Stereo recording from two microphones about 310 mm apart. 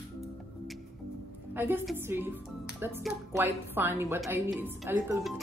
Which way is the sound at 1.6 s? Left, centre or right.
Centre.